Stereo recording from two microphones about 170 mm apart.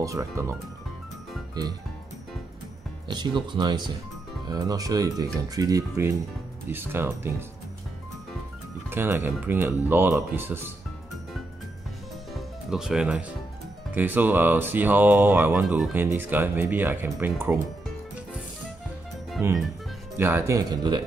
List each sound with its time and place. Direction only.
0.0 s speech: 20° right (ahead or behind)
3.1 s speech: 25° right (ahead or behind)
8.9 s speech: 15° right (ahead or behind)
12.4 s music: 5° right (ahead or behind)
13.9 s speech: 10° right (ahead or behind)
20.2 s speech: 15° right (ahead or behind)